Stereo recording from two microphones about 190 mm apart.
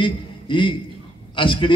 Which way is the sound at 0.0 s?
25° left (ahead or behind).